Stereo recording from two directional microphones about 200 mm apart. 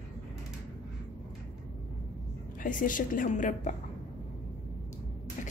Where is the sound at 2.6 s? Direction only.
40° left (ahead or behind).